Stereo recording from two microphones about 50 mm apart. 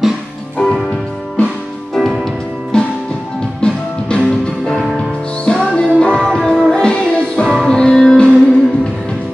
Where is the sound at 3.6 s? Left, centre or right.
Centre.